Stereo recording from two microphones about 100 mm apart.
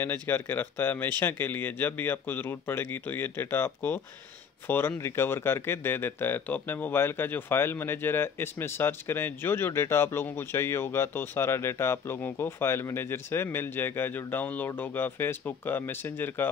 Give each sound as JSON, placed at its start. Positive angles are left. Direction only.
{"t": 0.0, "sound": "speech", "side_deg": 20}